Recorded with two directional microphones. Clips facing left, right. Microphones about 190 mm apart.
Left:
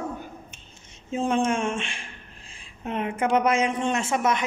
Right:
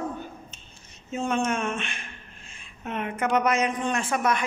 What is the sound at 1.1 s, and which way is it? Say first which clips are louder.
Speech: left 3 dB; 30° left (ahead or behind).